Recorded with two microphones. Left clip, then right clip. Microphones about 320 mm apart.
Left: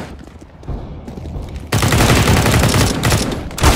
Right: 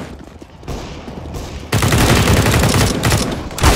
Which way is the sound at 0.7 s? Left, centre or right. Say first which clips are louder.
Right 4 dB; right.